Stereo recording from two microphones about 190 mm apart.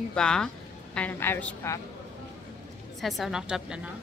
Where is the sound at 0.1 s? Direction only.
5° left (ahead or behind).